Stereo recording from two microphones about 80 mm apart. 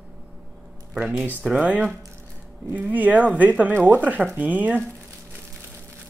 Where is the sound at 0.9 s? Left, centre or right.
Centre.